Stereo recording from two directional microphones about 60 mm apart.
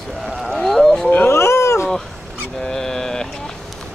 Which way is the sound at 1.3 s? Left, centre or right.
Left.